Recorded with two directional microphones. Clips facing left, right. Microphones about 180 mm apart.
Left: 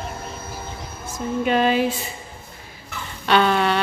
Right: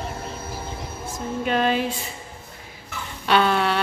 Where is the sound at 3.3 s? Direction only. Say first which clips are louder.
Left 2 dB; 5° right (ahead or behind).